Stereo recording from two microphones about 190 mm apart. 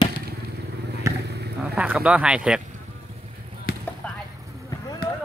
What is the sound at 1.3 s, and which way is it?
Vehicle, 60° right (ahead or behind).